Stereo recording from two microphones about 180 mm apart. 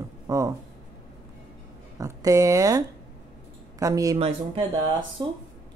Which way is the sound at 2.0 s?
20° right (ahead or behind).